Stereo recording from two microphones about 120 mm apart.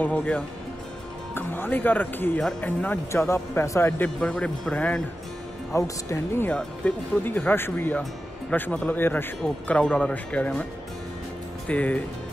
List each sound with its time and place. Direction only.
0.0 s speech: 10° left (ahead or behind)
4.0 s speech: 10° left (ahead or behind)
5.7 s speech: 25° left (ahead or behind)
6.5 s speech: 10° left (ahead or behind)